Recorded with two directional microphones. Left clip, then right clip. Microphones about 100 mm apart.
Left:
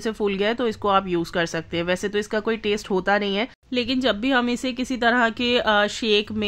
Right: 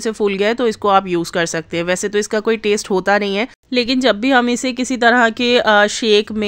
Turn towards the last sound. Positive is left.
turn(degrees=-40)  # may be behind; listen again after turning